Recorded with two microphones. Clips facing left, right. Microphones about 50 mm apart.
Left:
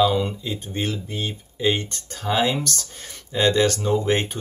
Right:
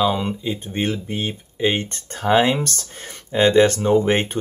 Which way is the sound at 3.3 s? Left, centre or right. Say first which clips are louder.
Right 5 dB; right.